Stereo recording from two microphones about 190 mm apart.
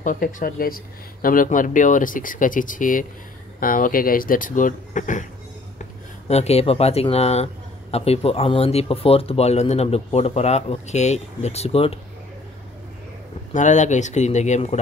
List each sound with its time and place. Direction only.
0.0 s speech: 45° left (ahead or behind)
6.2 s a man's voice: 35° left (ahead or behind)
13.5 s a man's voice: 40° left (ahead or behind)